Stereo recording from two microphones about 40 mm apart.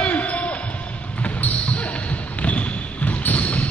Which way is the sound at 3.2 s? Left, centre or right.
Left.